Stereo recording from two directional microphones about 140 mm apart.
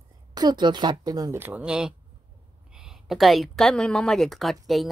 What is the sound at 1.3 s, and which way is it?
Speech, 10° right (ahead or behind).